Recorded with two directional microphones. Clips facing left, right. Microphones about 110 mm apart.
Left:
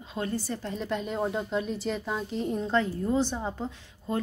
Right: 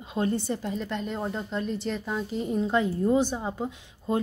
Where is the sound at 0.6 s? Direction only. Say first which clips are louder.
Right 1 dB; centre (ahead or behind).